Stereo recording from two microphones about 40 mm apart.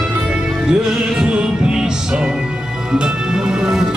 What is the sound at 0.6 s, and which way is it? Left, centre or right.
Music, right.